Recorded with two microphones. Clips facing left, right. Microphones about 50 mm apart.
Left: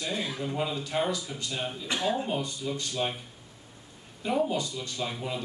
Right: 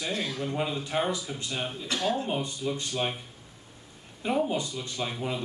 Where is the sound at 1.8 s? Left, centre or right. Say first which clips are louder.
Even; centre.